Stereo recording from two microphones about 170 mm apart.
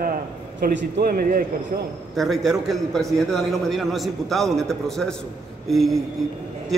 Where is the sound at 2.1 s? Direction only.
Centre (ahead or behind).